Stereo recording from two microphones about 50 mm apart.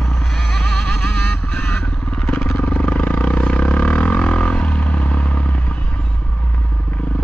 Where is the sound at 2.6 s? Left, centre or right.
Left.